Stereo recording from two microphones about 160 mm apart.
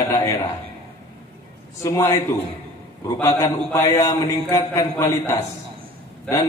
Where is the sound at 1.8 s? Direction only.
15° left (ahead or behind).